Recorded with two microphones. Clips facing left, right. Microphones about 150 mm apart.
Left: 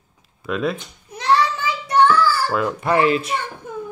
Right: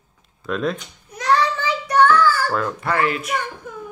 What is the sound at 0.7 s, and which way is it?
Babbling, 30° left (ahead or behind).